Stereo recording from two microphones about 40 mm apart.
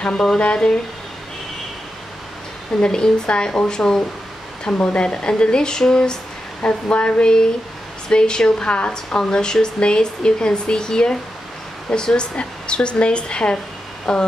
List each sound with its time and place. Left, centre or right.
0.0 s speech: centre
2.8 s speech: left